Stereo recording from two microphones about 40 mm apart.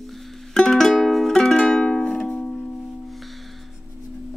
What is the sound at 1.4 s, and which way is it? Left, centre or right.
Music, centre.